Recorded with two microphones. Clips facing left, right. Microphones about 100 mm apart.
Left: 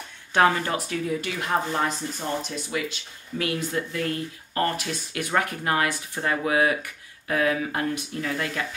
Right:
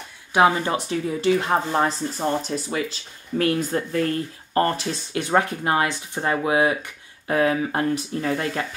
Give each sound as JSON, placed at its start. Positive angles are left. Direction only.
{"t": 0.3, "sound": "speech", "side_deg": -15}